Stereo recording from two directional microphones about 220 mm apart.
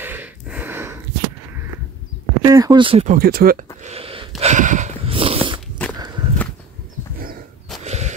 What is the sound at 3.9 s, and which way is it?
Gasp, 25° right (ahead or behind).